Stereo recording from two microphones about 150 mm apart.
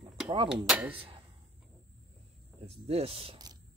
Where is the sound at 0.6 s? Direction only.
10° right (ahead or behind).